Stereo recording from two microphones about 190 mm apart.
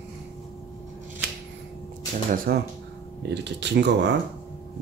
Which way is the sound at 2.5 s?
55° right (ahead or behind).